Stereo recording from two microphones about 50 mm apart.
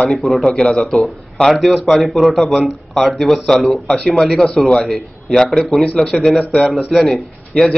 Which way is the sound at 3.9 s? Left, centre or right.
Centre.